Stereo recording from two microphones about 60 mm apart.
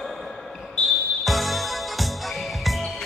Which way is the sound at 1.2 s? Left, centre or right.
Centre.